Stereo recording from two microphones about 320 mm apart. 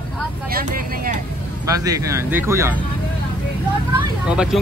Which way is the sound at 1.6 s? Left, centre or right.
Centre.